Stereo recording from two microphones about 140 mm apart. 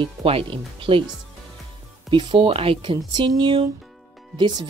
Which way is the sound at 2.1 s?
35° right (ahead or behind).